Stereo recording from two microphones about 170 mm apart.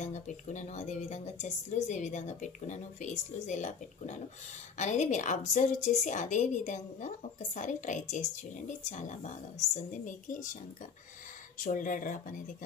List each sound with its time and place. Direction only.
0.0 s a woman's voice: 45° left (ahead or behind)